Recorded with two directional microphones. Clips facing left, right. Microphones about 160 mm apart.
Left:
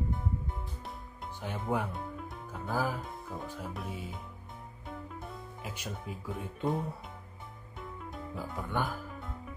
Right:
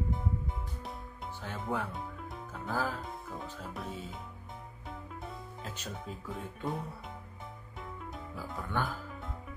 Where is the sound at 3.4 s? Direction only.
10° left (ahead or behind).